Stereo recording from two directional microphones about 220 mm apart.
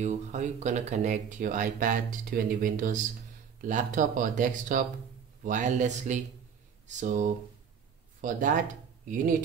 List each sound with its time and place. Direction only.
0.0 s speech: 30° right (ahead or behind)